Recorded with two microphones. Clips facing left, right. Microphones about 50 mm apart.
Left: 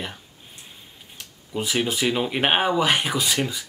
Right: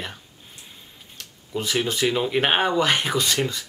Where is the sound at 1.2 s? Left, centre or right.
Centre.